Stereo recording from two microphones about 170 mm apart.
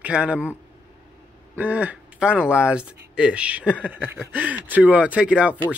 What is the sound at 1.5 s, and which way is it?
Speech, 10° right (ahead or behind).